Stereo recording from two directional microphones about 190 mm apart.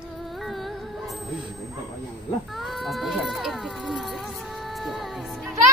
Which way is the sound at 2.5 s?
Centre (ahead or behind).